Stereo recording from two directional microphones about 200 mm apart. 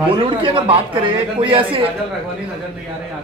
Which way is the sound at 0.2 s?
25° right (ahead or behind).